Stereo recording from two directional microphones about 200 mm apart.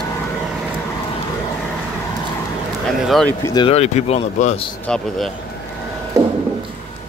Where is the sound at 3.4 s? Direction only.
25° left (ahead or behind).